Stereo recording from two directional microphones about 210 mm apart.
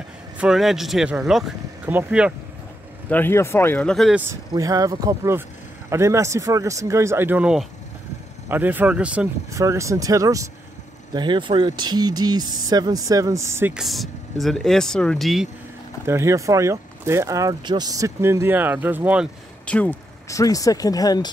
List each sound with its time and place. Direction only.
0.4 s speech: centre (ahead or behind)
3.1 s speech: 10° left (ahead or behind)
4.3 s speech: 15° right (ahead or behind); by 15.4 s centre (ahead or behind)
16.1 s speech: 15° right (ahead or behind)
19.6 s speech: 5° left (ahead or behind)